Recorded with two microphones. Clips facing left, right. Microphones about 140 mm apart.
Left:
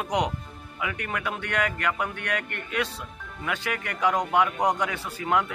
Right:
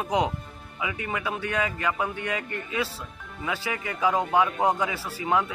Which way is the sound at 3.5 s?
15° right (ahead or behind).